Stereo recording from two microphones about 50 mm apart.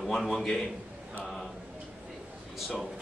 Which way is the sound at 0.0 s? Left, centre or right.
Centre.